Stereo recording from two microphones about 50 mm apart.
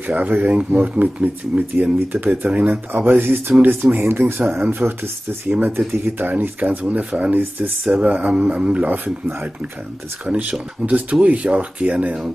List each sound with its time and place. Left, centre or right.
0.0 s speech: right
10.3 s speech: right